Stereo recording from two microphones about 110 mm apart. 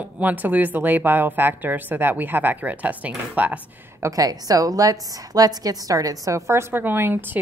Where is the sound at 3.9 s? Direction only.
30° right (ahead or behind).